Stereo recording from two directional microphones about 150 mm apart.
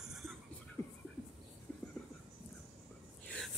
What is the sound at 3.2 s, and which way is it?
Whispering, 5° left (ahead or behind).